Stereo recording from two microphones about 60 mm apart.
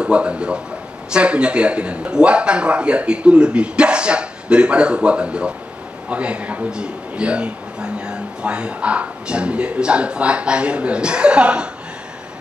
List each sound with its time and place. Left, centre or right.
0.0 s a man's voice: centre